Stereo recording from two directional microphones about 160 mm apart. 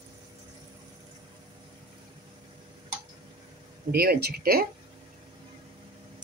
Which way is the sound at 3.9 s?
75° right (ahead or behind).